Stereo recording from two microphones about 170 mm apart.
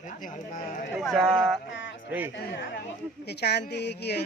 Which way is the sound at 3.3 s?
75° left (ahead or behind).